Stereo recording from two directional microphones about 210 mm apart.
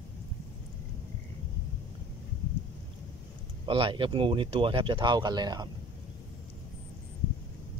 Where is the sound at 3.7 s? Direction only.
25° right (ahead or behind).